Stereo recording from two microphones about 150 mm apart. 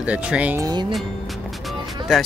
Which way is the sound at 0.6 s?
30° right (ahead or behind).